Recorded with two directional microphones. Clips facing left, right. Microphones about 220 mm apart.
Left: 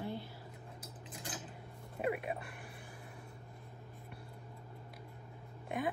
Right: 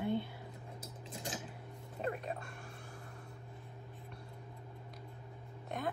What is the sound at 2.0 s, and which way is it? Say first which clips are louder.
Speech: left 3 dB; 10° left (ahead or behind).